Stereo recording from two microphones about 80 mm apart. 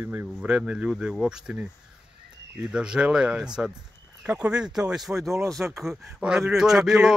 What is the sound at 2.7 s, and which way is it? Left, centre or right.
A man's voice, centre.